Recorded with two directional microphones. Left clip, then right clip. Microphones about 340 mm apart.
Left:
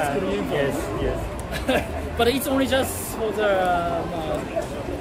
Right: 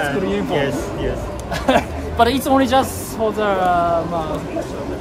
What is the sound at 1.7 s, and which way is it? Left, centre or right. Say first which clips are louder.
A woman's voice: right 7 dB; centre.